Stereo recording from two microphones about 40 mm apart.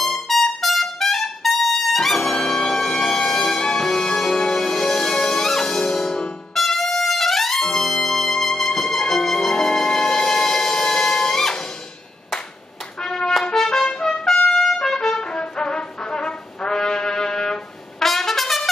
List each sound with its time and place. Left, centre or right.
0.0 s trumpet: centre
2.3 s music: centre
6.5 s trumpet: centre
13.0 s brass instrument: centre
13.4 s trumpet: centre
17.9 s trumpet: centre